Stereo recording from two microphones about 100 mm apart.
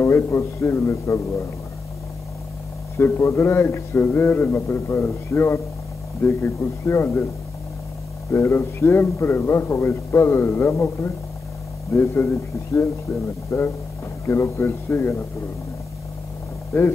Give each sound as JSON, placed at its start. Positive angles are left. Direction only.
{"t": 0.0, "sound": "a man's voice", "side_deg": 30}
{"t": 3.0, "sound": "a man's voice", "side_deg": 25}
{"t": 8.3, "sound": "a man's voice", "side_deg": 30}
{"t": 13.5, "sound": "a man's voice", "side_deg": 25}
{"t": 16.7, "sound": "a man's voice", "side_deg": 25}